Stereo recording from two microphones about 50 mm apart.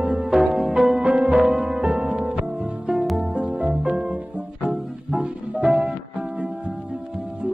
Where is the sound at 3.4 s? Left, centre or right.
Right.